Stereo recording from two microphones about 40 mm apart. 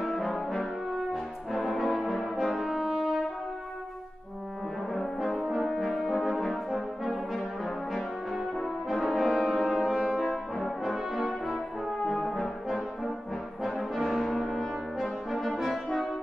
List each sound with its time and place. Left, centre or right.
0.0 s brass instrument: centre
4.9 s brass instrument: centre
7.9 s brass instrument: centre
12.1 s french horn: centre
13.7 s brass instrument: centre
15.6 s french horn: centre